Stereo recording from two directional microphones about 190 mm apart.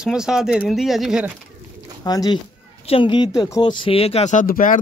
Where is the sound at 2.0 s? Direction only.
20° left (ahead or behind).